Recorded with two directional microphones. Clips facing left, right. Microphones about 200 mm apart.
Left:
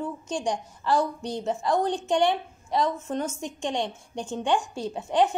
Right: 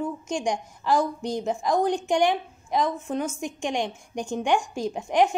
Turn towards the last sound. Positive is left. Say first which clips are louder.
# right 1 dB
turn(degrees=-10)  # may be behind; listen again after turning